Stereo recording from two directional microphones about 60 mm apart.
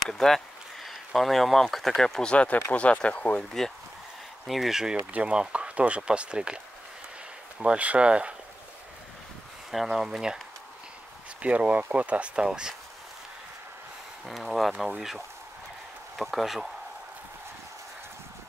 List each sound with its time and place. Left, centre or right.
0.1 s speech: centre
2.3 s speech: left
4.5 s speech: centre
7.6 s speech: right
9.7 s speech: centre
11.4 s speech: right
14.2 s speech: centre